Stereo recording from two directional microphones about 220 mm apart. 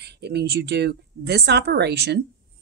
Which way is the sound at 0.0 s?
50° right (ahead or behind).